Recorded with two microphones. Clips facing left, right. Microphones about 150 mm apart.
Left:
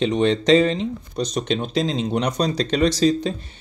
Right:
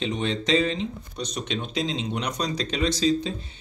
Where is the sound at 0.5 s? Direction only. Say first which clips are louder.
Left 5 dB; 50° left (ahead or behind).